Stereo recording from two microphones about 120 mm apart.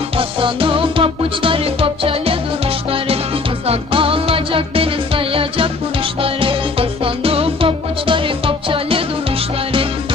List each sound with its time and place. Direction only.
0.2 s music: 45° right (ahead or behind)
3.6 s music: 50° right (ahead or behind)